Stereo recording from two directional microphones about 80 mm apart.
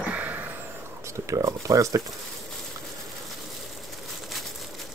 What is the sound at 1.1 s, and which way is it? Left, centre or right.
Speech, right.